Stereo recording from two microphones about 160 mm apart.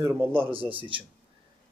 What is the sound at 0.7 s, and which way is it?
Speech, 30° right (ahead or behind).